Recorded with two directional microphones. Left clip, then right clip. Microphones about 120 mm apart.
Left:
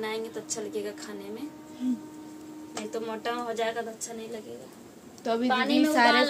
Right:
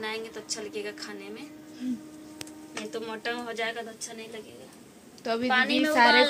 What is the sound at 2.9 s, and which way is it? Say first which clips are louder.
A woman's voice: left 2 dB; 15° left (ahead or behind).